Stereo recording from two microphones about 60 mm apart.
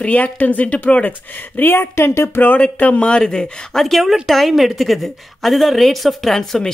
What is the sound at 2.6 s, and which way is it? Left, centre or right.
Speech, left.